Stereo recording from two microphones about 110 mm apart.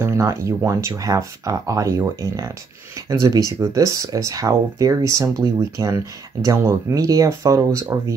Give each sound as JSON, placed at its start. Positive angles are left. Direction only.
{"t": 0.0, "sound": "speech", "side_deg": -25}